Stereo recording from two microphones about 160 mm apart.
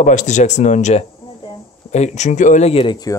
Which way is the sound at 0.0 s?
50° left (ahead or behind).